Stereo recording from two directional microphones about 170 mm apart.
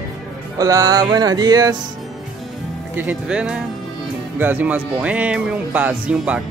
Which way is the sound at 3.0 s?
10° right (ahead or behind).